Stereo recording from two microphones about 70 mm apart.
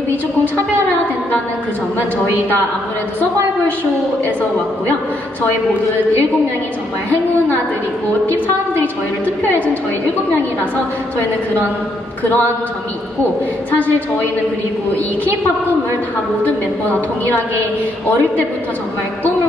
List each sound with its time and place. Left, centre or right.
12.2 s a woman's voice: left
13.7 s a woman's voice: left
16.4 s a woman's voice: left